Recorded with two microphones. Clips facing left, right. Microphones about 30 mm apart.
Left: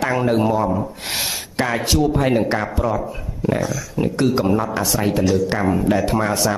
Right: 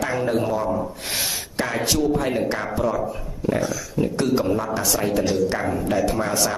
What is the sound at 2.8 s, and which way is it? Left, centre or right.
Speech, centre.